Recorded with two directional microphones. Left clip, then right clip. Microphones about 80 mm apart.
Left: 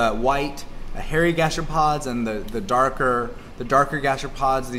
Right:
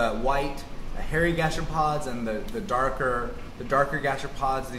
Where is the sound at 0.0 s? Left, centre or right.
Left.